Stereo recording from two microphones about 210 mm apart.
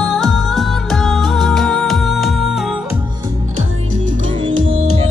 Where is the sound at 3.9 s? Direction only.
35° right (ahead or behind).